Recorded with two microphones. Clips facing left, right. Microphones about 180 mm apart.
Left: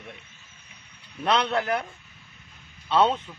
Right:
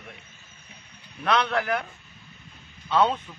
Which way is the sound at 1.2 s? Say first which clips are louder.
Even; 30° left (ahead or behind).